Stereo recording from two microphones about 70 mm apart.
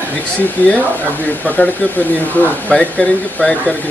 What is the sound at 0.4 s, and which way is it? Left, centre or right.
Speech, left.